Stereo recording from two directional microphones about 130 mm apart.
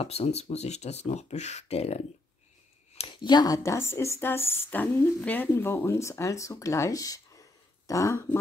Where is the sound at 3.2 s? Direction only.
30° left (ahead or behind).